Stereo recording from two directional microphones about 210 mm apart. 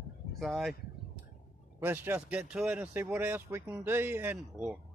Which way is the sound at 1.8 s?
10° right (ahead or behind).